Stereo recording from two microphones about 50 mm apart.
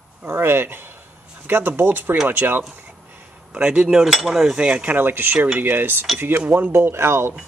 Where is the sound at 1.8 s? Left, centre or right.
Right.